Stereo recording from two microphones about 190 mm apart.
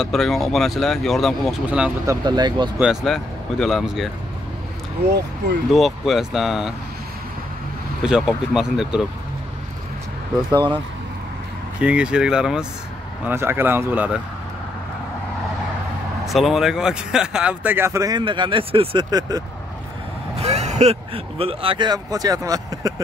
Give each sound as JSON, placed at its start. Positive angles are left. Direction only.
{"t": 0.0, "sound": "speech", "side_deg": 0}
{"t": 2.0, "sound": "speech", "side_deg": -20}
{"t": 2.8, "sound": "speech", "side_deg": 0}
{"t": 5.7, "sound": "speech", "side_deg": 0}
{"t": 8.0, "sound": "speech", "side_deg": -5}
{"t": 10.5, "sound": "speech", "side_deg": -25}
{"t": 11.8, "sound": "speech", "side_deg": -5}
{"t": 16.3, "sound": "speech", "side_deg": 0}
{"t": 20.3, "sound": "speech", "side_deg": -35}